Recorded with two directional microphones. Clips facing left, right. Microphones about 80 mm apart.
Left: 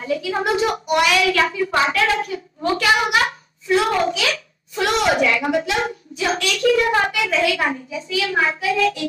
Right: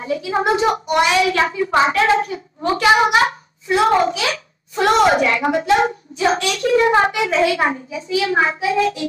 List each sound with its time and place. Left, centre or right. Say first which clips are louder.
0.0 s a woman's voice: right 2 dB; right